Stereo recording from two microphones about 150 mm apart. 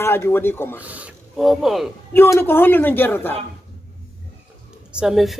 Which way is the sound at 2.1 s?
15° left (ahead or behind).